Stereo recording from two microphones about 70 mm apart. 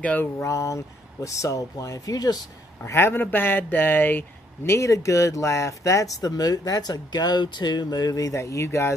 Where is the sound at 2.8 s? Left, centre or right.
Left.